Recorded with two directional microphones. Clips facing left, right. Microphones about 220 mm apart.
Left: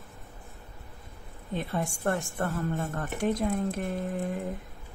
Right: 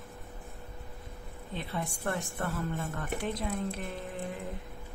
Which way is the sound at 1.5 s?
45° left (ahead or behind).